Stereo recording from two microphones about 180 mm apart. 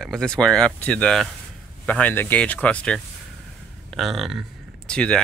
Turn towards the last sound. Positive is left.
turn(degrees=5)  # may be behind; listen again after turning